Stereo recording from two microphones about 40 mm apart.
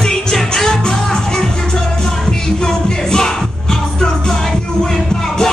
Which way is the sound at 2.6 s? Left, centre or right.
Centre.